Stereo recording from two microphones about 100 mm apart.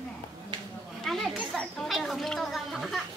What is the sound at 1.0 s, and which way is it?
Children playing, centre (ahead or behind).